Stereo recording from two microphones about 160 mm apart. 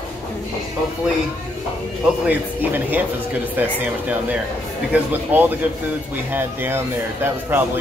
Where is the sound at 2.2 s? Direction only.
10° right (ahead or behind).